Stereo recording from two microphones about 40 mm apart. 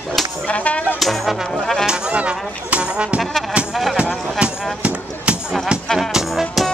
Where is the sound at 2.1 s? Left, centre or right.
Right.